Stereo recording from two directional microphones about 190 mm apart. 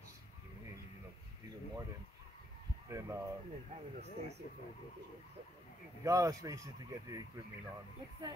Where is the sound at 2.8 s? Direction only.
15° right (ahead or behind).